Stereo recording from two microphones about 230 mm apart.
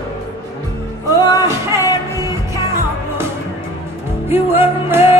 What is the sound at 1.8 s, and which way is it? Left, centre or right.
Music, centre.